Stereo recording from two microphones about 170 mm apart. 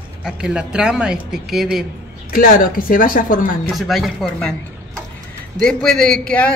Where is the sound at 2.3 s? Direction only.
55° left (ahead or behind).